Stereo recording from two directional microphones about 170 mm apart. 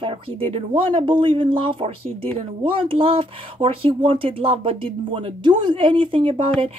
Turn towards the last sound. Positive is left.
turn(degrees=-30)  # may be behind; listen again after turning